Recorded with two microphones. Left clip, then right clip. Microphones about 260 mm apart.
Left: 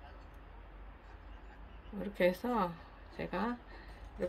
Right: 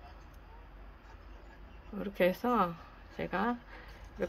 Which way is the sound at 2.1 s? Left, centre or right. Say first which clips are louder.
Right 3 dB; centre.